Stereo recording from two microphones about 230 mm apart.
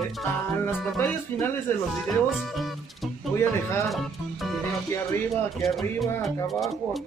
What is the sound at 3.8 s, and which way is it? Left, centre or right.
Speech, centre.